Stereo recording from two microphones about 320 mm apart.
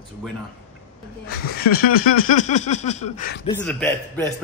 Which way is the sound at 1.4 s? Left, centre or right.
Left.